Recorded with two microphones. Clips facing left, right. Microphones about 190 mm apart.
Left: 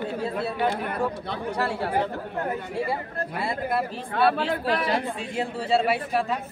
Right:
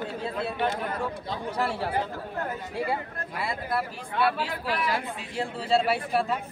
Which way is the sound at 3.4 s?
25° left (ahead or behind).